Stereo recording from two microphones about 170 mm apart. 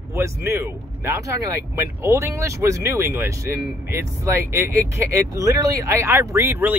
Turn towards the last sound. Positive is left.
turn(degrees=-15)  # may be behind; listen again after turning